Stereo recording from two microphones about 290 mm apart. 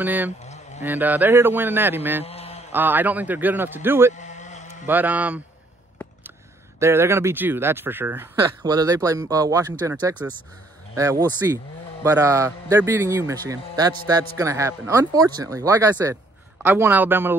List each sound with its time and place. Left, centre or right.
0.0 s a man's voice: centre
0.4 s a sound: left
0.8 s a man's voice: centre
2.2 s mantra: left
2.7 s a man's voice: centre
4.1 s sheep: left
4.8 s speech: centre
6.8 s a man's voice: centre